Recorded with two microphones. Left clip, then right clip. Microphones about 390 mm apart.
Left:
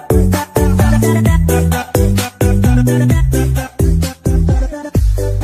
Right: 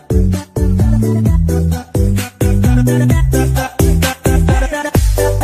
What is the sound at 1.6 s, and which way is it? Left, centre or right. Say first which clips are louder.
Music: left 5 dB; centre.